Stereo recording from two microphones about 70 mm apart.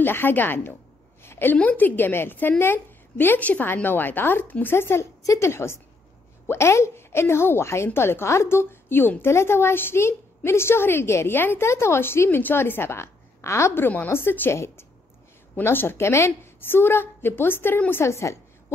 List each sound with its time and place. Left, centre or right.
0.0 s speech: left
1.2 s a sound: left
1.6 s a woman's voice: left
5.2 s a woman's voice: left
5.5 s a woman's voice: left
13.8 s a woman's voice: left
18.0 s a woman's voice: left